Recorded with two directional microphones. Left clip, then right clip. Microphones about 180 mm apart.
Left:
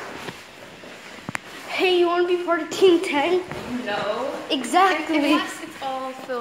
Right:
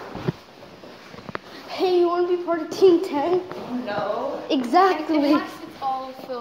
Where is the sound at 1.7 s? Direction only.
10° right (ahead or behind).